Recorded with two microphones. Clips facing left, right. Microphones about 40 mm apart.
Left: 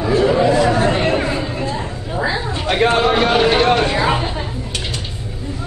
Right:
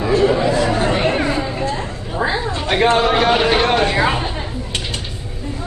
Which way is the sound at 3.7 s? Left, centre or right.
Right.